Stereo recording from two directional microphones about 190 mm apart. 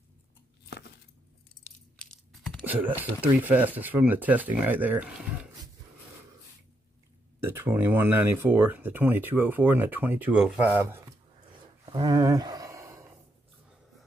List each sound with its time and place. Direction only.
2.3 s speech: centre (ahead or behind)
7.4 s speech: 10° right (ahead or behind)
11.9 s a sound: 20° right (ahead or behind)